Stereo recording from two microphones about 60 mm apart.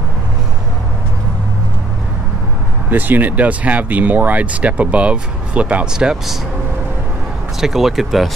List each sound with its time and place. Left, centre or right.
2.9 s speech: right; by 6.3 s centre
7.6 s speech: centre